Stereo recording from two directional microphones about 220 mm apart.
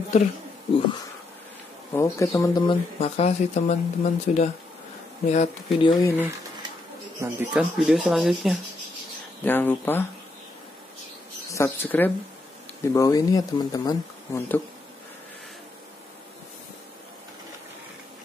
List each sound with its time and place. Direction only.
2.0 s speech: 15° left (ahead or behind)
3.0 s speech: 30° left (ahead or behind)
5.9 s speech: 10° left (ahead or behind)
7.2 s speech: 5° right (ahead or behind)
11.4 s speech: 15° left (ahead or behind)